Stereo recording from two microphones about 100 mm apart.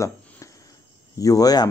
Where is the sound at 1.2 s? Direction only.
35° left (ahead or behind).